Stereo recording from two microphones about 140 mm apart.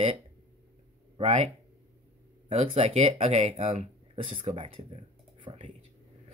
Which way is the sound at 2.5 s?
45° right (ahead or behind).